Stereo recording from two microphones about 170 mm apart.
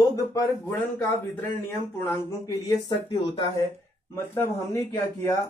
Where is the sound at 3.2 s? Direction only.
30° left (ahead or behind).